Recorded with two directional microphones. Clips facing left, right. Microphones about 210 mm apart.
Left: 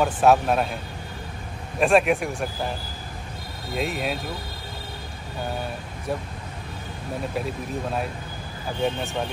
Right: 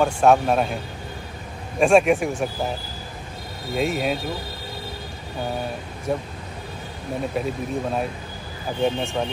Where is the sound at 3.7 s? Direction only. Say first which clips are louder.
Right 4 dB; centre (ahead or behind).